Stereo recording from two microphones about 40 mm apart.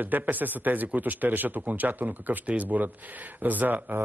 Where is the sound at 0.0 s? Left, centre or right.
Right.